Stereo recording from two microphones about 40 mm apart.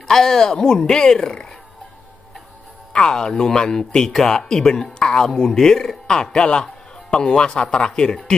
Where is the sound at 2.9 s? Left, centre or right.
Centre.